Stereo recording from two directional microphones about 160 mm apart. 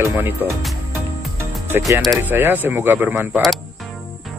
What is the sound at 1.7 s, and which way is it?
Speech, 15° right (ahead or behind).